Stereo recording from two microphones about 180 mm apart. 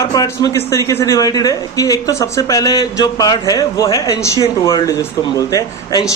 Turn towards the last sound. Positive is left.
turn(degrees=20)  # may be behind; listen again after turning